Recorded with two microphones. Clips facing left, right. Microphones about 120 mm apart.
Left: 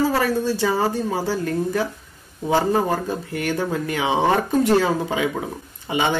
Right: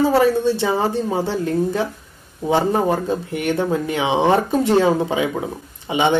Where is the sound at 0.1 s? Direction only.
20° right (ahead or behind).